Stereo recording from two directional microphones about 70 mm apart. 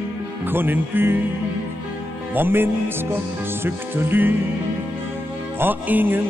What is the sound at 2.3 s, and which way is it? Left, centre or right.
Music, right.